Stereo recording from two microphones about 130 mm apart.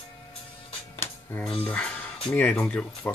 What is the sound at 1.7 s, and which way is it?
Speech, 10° left (ahead or behind).